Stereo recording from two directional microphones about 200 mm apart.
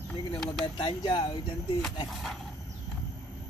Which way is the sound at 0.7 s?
20° left (ahead or behind).